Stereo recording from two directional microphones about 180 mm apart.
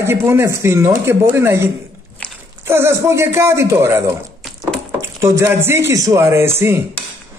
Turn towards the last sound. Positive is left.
turn(degrees=-15)  # may be behind; listen again after turning